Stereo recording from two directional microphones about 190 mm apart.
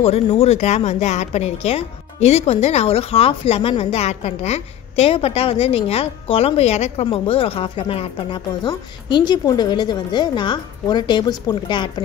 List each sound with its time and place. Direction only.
0.0 s speech: 30° left (ahead or behind)